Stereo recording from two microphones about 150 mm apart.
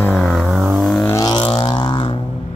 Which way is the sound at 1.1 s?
25° left (ahead or behind).